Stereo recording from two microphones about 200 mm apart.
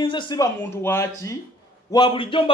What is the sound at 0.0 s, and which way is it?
A man's voice, 25° left (ahead or behind).